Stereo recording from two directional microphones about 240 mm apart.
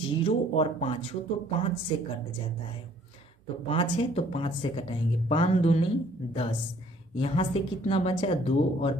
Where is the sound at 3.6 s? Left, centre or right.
Left.